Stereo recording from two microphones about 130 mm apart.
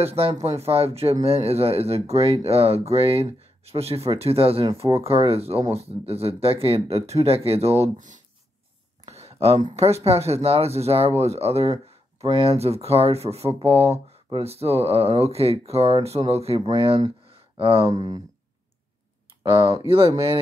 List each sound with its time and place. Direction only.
0.0 s speech: 50° right (ahead or behind)
9.0 s a sound: 50° right (ahead or behind)
9.8 s speech: 50° right (ahead or behind)
17.8 s speech: 30° right (ahead or behind)
19.5 s speech: 30° right (ahead or behind)